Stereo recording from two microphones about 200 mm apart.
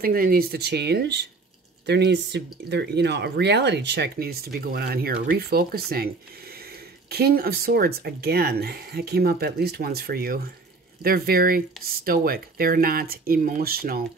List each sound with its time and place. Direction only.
0.0 s speech: 45° right (ahead or behind)
7.1 s speech: 50° right (ahead or behind)